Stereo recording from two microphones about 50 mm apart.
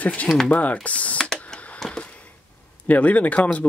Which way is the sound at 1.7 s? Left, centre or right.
Centre.